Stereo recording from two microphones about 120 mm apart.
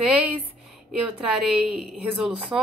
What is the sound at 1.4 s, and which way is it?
A woman's voice, 5° right (ahead or behind).